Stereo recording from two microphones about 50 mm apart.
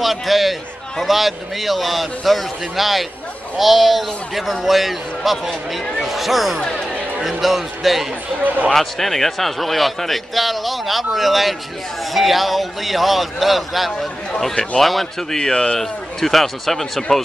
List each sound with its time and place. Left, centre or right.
0.0 s a man's voice: centre
8.5 s a man's voice: right
8.7 s speech: centre
14.3 s speech: centre
14.8 s speech: centre
15.8 s speech: centre